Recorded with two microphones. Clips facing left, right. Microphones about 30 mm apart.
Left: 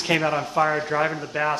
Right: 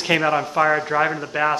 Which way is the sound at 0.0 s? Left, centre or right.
Centre.